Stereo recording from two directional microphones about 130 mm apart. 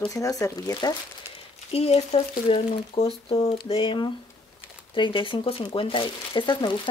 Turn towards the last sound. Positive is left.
turn(degrees=40)  # may be behind; listen again after turning